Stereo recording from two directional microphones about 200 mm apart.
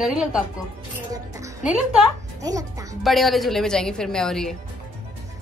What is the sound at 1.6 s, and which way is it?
Speech, centre (ahead or behind).